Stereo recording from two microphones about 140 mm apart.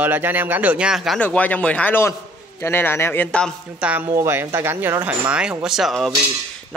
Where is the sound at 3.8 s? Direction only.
10° right (ahead or behind).